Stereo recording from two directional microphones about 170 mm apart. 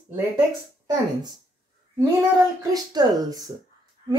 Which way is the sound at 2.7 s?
20° right (ahead or behind).